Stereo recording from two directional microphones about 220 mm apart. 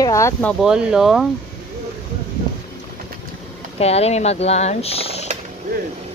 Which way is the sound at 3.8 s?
30° left (ahead or behind).